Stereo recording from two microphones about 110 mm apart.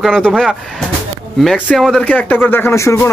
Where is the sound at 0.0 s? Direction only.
5° left (ahead or behind).